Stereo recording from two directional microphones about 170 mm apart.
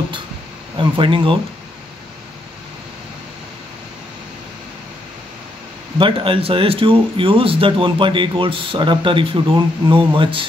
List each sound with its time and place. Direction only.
0.7 s speech: 30° right (ahead or behind)
5.9 s speech: 30° right (ahead or behind)